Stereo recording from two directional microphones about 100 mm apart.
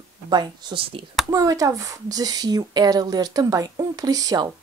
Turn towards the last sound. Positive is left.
turn(degrees=-40)  # may be behind; listen again after turning